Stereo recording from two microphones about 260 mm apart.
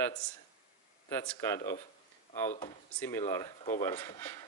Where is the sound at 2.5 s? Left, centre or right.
Left.